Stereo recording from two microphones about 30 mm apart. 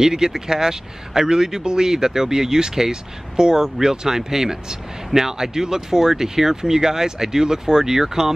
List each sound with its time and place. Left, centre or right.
0.0 s speech: centre